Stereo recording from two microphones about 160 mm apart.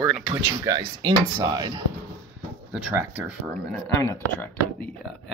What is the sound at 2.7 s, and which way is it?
Speech, 10° right (ahead or behind).